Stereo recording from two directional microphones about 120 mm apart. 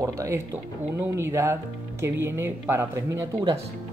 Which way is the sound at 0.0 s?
25° right (ahead or behind).